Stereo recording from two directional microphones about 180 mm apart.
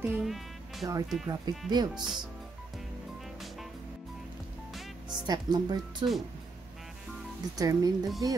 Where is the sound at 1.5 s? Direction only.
25° right (ahead or behind).